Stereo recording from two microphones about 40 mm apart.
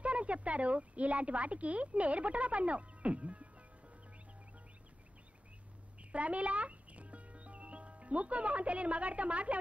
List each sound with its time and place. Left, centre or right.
0.0 s speech: right
6.1 s speech: right